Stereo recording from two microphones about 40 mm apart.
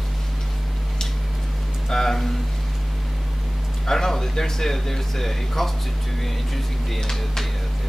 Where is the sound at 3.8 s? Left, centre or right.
Centre.